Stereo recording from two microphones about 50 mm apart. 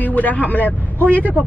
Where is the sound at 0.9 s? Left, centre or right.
Right.